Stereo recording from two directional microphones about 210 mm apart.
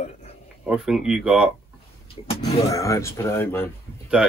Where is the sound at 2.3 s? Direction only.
25° left (ahead or behind).